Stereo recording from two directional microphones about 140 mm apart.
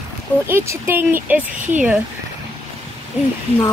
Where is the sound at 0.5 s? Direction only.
20° right (ahead or behind).